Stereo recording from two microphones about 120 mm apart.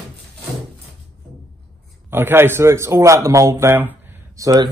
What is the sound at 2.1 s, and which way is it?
A man's voice, 20° right (ahead or behind).